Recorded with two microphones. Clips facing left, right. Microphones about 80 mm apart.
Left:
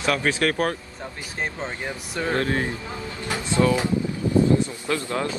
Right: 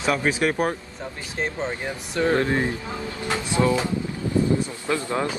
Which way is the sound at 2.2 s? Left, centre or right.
Right.